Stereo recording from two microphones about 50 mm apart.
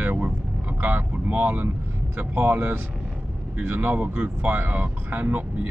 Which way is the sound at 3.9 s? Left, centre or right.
Right.